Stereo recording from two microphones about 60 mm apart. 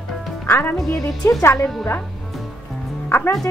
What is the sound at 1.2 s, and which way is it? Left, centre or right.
Speech, left.